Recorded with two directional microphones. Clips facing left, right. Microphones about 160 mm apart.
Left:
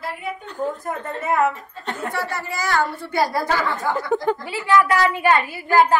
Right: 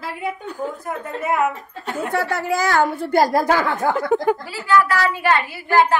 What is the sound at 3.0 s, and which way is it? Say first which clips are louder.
Speech: right 5 dB; 45° right (ahead or behind).